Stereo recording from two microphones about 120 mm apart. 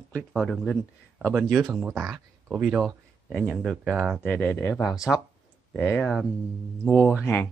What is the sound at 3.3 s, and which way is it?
Speech, centre (ahead or behind).